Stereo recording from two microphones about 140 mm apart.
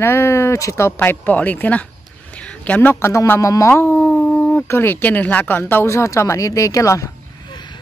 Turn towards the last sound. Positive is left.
turn(degrees=25)  # may be behind; listen again after turning